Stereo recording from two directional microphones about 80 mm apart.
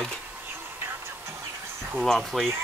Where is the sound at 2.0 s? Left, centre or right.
Centre.